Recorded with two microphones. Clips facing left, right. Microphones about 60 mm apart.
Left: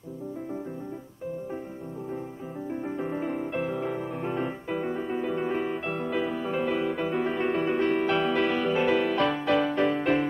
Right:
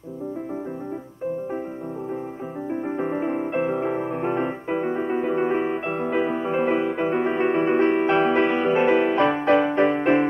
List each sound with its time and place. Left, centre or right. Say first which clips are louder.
2.7 s music: right 6 dB; right